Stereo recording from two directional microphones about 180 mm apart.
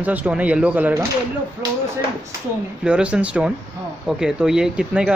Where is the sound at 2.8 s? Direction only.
5° right (ahead or behind).